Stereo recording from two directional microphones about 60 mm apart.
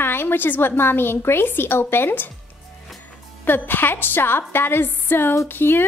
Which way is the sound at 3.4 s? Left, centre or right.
Left.